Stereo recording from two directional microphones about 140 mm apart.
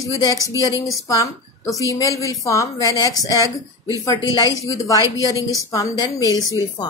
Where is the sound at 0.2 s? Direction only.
25° left (ahead or behind).